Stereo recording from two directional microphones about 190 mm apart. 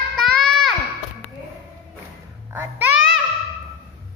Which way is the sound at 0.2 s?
Centre (ahead or behind).